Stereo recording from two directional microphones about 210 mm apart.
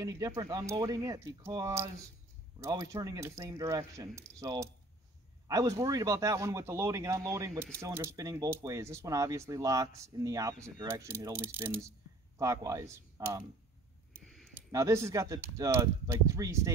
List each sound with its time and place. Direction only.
0.0 s speech: 15° right (ahead or behind)
14.2 s a sound: centre (ahead or behind)
14.5 s speech: 15° right (ahead or behind)